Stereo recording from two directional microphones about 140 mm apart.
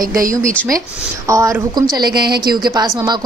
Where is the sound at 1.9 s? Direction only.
30° right (ahead or behind).